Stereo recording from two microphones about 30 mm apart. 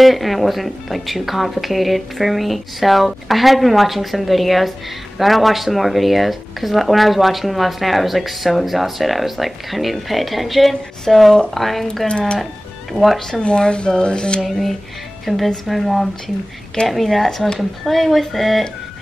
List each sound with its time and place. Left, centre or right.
0.0 s a woman's voice: centre
12.1 s speech: left
12.9 s speech: centre
13.4 s speech: left
15.2 s a woman's voice: centre